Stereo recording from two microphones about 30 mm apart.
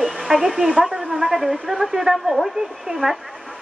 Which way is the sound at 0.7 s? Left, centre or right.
Centre.